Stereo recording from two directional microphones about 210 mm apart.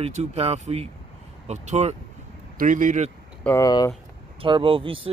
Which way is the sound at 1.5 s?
30° right (ahead or behind).